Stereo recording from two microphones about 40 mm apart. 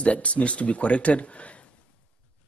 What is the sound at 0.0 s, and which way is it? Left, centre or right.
A man's voice, left.